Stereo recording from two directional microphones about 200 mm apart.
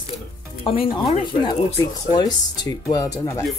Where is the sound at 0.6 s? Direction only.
25° left (ahead or behind).